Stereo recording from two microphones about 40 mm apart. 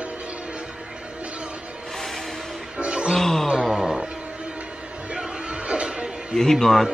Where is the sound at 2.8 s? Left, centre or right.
Right.